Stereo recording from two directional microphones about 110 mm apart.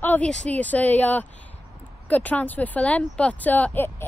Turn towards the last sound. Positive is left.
turn(degrees=20)  # may be behind; listen again after turning